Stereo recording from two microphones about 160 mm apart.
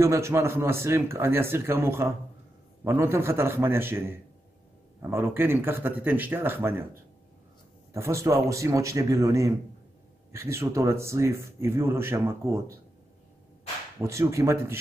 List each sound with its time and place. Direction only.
0.0 s speech: 15° right (ahead or behind)
13.9 s speech: 15° right (ahead or behind)